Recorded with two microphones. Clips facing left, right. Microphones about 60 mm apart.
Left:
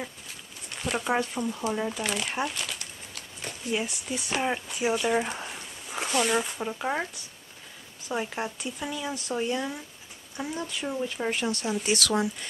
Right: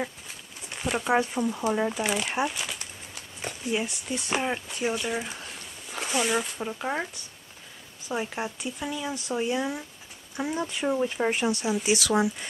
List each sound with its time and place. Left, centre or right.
0.7 s speech: centre
3.7 s speech: centre
5.4 s a sound: centre
6.0 s speech: centre
10.3 s speech: right